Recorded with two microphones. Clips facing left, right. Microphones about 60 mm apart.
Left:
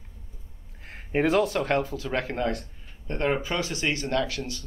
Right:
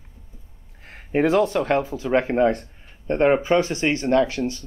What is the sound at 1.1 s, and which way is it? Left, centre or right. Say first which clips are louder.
Speech: right 4 dB; centre.